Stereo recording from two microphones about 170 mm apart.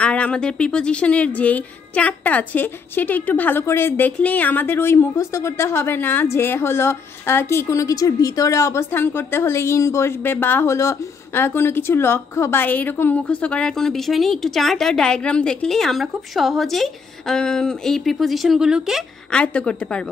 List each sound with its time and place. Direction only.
0.0 s speech: 5° left (ahead or behind)